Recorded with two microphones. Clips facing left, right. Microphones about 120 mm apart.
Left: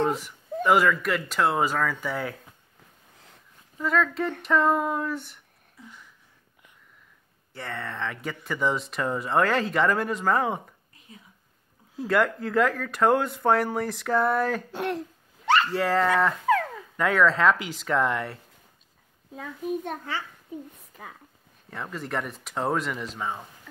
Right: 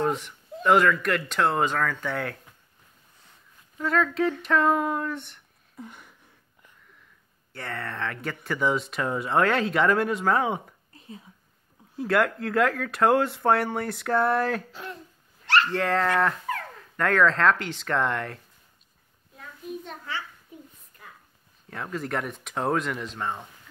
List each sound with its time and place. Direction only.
0.7 s speech: 5° left (ahead or behind)
3.7 s speech: centre (ahead or behind)
5.8 s a sound: 55° right (ahead or behind)
7.5 s speech: centre (ahead or behind)
10.9 s whispering: 35° right (ahead or behind)
12.1 s speech: centre (ahead or behind)
14.7 s speech: 85° left
15.7 s speech: 5° left (ahead or behind)
19.7 s a child's voice: 55° left (ahead or behind)
20.9 s a sound: 90° left
21.6 s speech: centre (ahead or behind)